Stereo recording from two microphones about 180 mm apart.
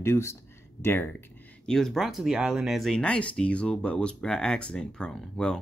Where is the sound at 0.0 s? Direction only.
15° left (ahead or behind).